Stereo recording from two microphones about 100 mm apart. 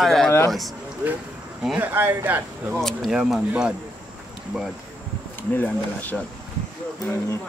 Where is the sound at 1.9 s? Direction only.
20° right (ahead or behind).